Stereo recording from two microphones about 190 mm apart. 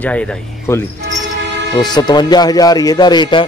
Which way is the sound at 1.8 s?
20° left (ahead or behind).